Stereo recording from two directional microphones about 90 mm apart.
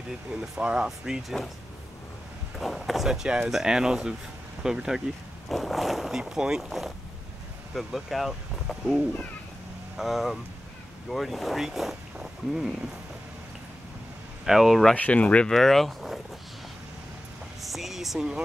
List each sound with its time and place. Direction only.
0.4 s speech: 10° right (ahead or behind)
2.6 s speech: centre (ahead or behind)
14.4 s speech: 5° right (ahead or behind)
15.0 s speech: 15° left (ahead or behind)
15.5 s speech: centre (ahead or behind)
17.6 s speech: centre (ahead or behind)